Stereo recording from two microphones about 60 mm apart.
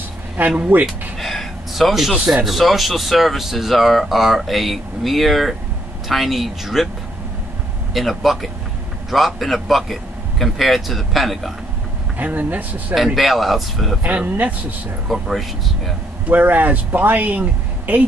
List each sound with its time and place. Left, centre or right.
0.4 s speech: right
0.8 s a sound: centre
2.1 s speech: centre
2.4 s speech: centre
7.9 s speech: centre
12.2 s speech: right
12.9 s speech: centre
14.0 s speech: right
15.0 s speech: centre
16.3 s speech: right